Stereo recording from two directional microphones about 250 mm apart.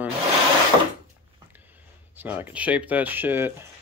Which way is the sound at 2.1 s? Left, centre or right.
Centre.